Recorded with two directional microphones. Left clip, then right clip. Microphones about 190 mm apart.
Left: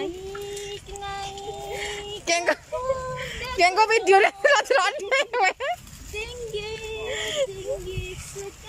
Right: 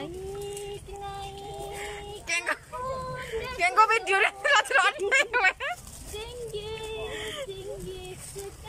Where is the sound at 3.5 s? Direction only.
25° left (ahead or behind).